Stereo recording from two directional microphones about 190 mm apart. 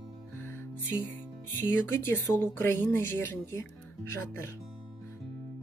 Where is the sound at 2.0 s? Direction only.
10° left (ahead or behind).